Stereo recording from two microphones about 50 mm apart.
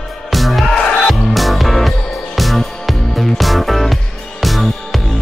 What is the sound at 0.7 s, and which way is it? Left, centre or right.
Music, centre.